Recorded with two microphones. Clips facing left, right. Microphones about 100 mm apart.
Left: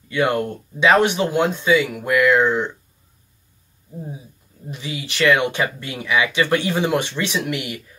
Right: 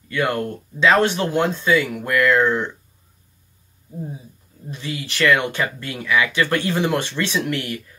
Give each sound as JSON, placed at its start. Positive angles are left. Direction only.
{"t": 0.1, "sound": "speech", "side_deg": 20}
{"t": 4.6, "sound": "speech", "side_deg": 15}